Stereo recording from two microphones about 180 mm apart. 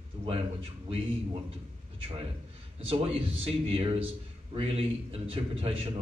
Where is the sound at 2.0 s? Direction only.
30° right (ahead or behind).